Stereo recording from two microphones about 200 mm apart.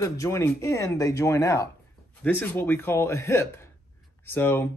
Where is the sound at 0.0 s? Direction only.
15° left (ahead or behind).